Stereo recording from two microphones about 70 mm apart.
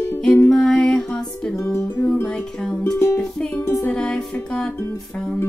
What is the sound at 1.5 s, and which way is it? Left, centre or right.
Music, left.